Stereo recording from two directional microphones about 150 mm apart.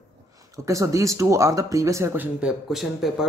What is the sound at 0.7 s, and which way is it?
Speech, 20° right (ahead or behind).